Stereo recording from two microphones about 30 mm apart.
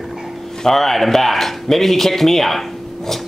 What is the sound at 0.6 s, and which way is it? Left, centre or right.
Speech, centre.